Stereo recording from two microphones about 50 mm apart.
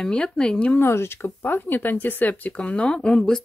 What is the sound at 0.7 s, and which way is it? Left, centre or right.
Speech, left.